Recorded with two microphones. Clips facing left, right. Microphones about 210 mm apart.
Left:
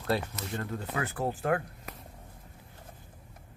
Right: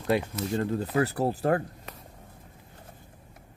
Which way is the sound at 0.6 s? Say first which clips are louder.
Right 8 dB; 35° right (ahead or behind).